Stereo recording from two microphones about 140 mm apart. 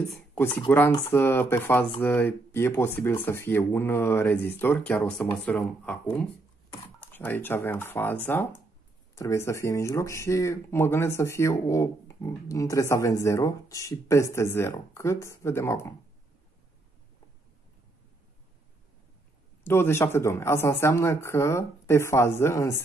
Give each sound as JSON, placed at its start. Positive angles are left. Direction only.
{"t": 0.7, "sound": "speech", "side_deg": 15}
{"t": 7.1, "sound": "speech", "side_deg": 15}
{"t": 19.6, "sound": "speech", "side_deg": 15}